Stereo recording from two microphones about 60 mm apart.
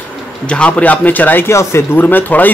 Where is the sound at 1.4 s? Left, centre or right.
Left.